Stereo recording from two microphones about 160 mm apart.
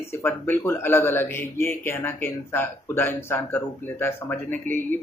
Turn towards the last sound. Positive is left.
turn(degrees=10)  # may be behind; listen again after turning